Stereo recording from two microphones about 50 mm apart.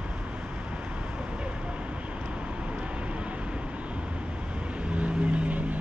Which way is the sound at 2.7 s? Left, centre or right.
Right.